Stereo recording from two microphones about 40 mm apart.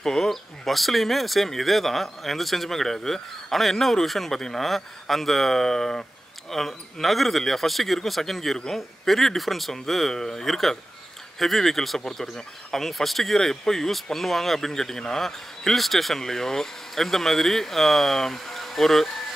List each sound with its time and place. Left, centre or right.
0.0 s speech: centre